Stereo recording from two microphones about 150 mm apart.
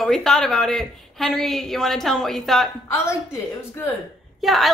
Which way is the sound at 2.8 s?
20° left (ahead or behind).